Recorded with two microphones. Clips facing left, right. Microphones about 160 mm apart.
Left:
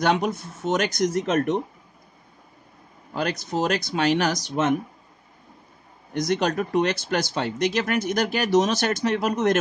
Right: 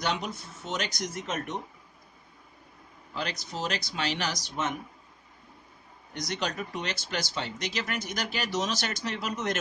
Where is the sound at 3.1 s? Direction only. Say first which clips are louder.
Left 9 dB; 50° left (ahead or behind).